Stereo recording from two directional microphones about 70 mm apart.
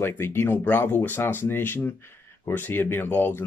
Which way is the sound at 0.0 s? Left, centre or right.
Left.